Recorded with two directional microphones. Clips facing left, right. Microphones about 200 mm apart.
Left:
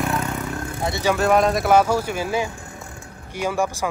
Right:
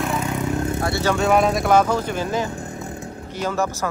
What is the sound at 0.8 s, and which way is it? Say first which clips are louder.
Speech: left 3 dB; 20° left (ahead or behind).